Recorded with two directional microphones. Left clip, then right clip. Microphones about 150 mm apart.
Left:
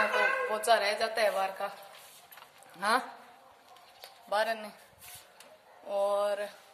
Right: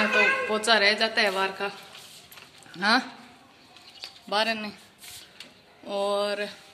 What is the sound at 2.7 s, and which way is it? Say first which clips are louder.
Speech: right 6 dB; 15° left (ahead or behind).